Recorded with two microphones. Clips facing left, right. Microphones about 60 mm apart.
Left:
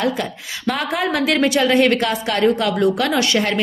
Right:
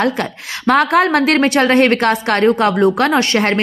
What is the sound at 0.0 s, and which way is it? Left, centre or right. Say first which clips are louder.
A woman's voice: right 4 dB; right.